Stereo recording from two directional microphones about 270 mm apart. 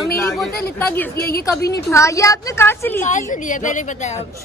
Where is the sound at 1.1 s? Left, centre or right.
Left.